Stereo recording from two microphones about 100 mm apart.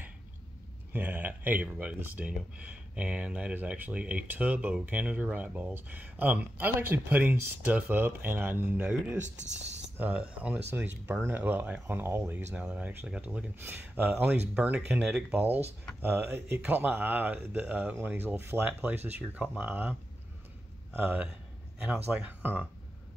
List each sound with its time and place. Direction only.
0.9 s speech: 15° right (ahead or behind)